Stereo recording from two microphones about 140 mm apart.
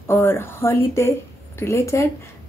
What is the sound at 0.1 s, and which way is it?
A woman's voice, 15° left (ahead or behind).